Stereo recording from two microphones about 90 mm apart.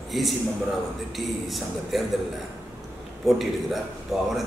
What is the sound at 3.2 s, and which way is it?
A man's voice, centre (ahead or behind).